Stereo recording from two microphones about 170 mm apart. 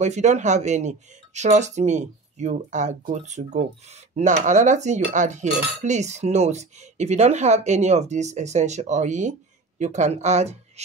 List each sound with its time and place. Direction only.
0.0 s cutlery: 45° right (ahead or behind)